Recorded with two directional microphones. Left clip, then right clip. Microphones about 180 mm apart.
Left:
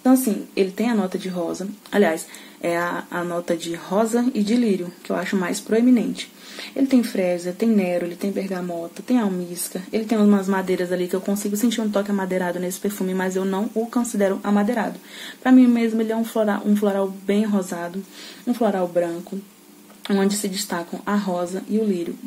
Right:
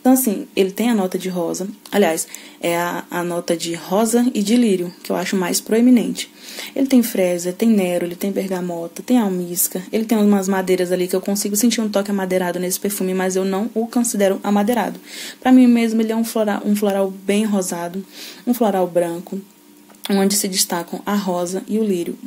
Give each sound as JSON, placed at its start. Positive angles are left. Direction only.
{"t": 0.0, "sound": "speech", "side_deg": -45}